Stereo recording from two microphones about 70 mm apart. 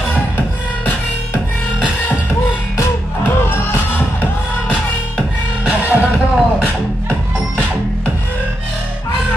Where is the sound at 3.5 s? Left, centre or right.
Left.